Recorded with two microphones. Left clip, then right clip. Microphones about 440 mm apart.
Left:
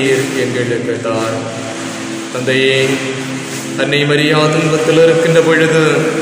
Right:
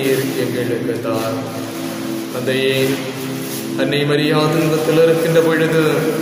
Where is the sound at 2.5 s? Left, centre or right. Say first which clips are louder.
Left 5 dB; right.